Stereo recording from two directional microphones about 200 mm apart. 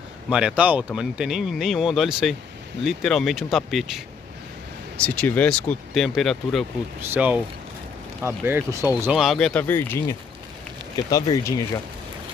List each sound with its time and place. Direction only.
0.3 s speech: 5° right (ahead or behind)
5.0 s speech: 5° left (ahead or behind)